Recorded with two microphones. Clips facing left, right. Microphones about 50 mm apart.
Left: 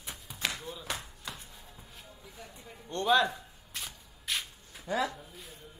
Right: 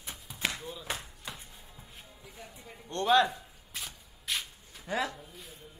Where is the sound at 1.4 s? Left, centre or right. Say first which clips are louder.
Left 1 dB; centre.